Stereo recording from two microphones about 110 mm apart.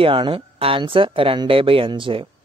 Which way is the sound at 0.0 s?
50° right (ahead or behind).